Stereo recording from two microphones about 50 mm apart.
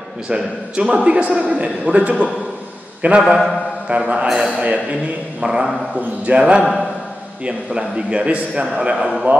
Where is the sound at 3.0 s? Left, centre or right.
Right.